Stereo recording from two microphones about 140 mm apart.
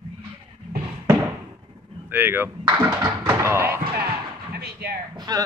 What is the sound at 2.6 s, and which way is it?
Thunk, 25° right (ahead or behind).